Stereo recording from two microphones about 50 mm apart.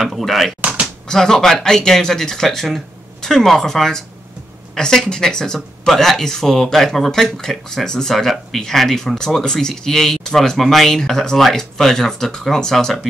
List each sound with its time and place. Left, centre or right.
0.0 s speech: centre
0.6 s a sound: right
1.0 s speech: centre